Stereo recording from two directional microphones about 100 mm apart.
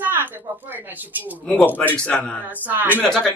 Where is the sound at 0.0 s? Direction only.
20° right (ahead or behind).